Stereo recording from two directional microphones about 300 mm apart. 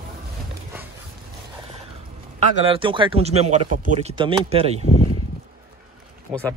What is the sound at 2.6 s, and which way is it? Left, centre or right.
Speech, centre.